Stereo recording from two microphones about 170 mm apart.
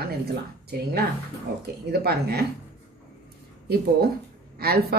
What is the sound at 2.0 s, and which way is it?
Speech, 70° right (ahead or behind).